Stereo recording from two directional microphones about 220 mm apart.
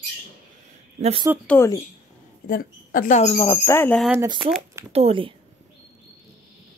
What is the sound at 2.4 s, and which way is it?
Speech, 40° left (ahead or behind).